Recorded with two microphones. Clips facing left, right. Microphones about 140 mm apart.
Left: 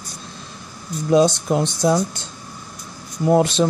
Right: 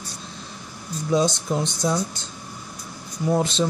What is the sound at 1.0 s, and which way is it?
Speech, 65° left (ahead or behind).